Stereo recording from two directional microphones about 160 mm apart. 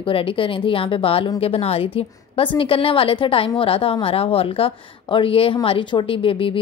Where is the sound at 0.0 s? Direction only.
35° left (ahead or behind).